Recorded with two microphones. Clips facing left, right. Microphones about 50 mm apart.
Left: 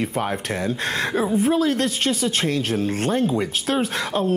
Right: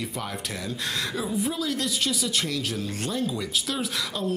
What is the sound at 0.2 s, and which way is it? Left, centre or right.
Speech, left.